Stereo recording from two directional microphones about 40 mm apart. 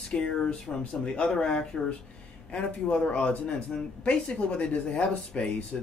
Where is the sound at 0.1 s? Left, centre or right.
Left.